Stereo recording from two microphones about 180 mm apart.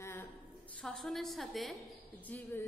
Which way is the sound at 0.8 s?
Centre (ahead or behind).